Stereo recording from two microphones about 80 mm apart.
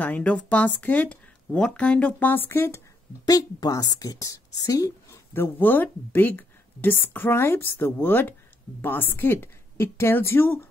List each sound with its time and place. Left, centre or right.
0.0 s speech: centre
3.3 s a woman's voice: left
5.1 s speech: left